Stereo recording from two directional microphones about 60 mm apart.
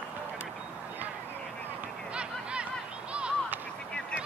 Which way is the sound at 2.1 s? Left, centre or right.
Centre.